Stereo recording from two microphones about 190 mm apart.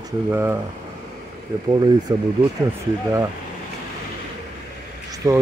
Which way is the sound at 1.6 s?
20° right (ahead or behind).